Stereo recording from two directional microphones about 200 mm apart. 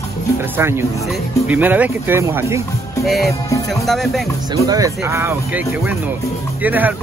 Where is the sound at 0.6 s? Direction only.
10° right (ahead or behind).